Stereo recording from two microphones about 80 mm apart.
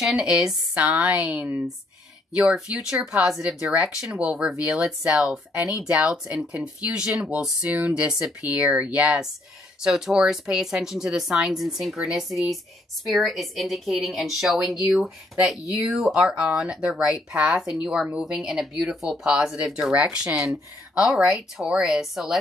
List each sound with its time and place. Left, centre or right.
0.0 s speech: centre
2.3 s speech: centre
6.2 s speech: centre
9.8 s speech: centre